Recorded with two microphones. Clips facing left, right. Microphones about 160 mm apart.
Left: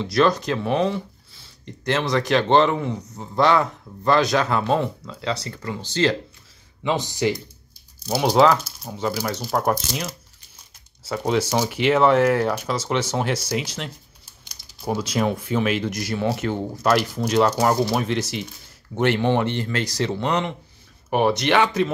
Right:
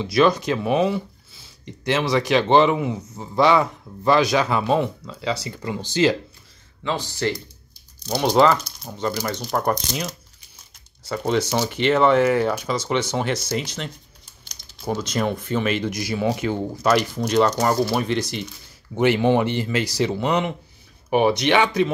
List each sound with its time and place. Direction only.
0.0 s speech: centre (ahead or behind)
6.8 s speech: 15° left (ahead or behind)
8.0 s speech: 5° left (ahead or behind)